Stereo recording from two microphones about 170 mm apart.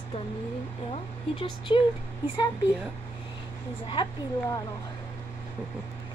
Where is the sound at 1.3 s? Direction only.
30° left (ahead or behind).